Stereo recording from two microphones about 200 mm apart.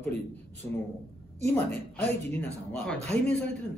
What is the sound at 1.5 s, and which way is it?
A man's voice, 10° left (ahead or behind).